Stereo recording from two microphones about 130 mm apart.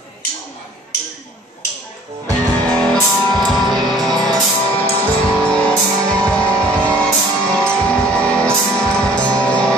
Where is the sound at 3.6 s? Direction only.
Centre (ahead or behind).